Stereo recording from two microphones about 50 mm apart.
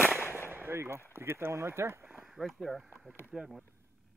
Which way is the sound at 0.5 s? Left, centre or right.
Right.